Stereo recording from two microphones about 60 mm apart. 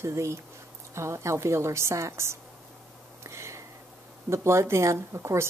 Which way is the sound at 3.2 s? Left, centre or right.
Right.